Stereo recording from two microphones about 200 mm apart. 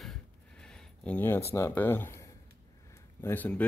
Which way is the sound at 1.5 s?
10° left (ahead or behind).